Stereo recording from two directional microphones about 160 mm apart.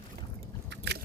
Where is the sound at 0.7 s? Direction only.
90° right.